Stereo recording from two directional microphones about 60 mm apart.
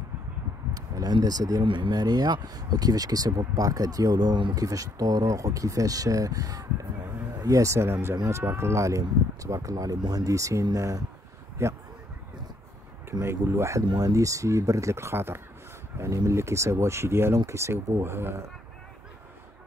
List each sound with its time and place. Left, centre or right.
0.7 s speech: right
7.4 s speech: right
11.6 s speech: right
13.2 s speech: right
16.0 s speech: right